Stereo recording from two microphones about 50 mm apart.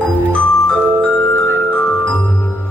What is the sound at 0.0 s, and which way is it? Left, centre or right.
Music, left.